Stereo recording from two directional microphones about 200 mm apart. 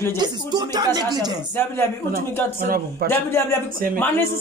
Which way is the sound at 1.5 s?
10° left (ahead or behind).